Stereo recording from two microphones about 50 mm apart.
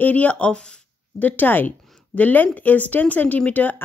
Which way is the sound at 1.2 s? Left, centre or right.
Left.